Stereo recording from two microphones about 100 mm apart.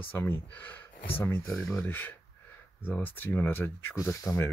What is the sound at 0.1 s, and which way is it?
Speech, 20° left (ahead or behind).